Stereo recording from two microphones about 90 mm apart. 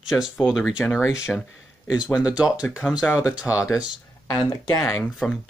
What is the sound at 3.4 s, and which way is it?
Speech, 35° left (ahead or behind).